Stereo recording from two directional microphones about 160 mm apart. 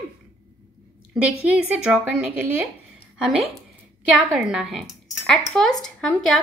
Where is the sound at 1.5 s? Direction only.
10° right (ahead or behind).